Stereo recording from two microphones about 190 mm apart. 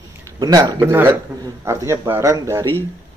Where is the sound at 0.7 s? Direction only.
10° right (ahead or behind).